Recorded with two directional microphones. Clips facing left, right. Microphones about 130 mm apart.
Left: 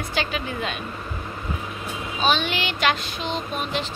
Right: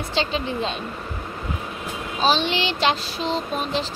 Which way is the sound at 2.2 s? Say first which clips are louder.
Right 2 dB; 30° right (ahead or behind).